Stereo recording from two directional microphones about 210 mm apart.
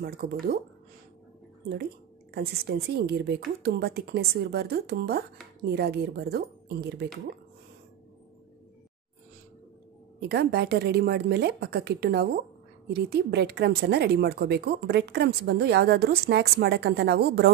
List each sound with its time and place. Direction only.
0.0 s speech: 45° right (ahead or behind)
2.3 s speech: 50° right (ahead or behind)
10.2 s speech: 50° right (ahead or behind)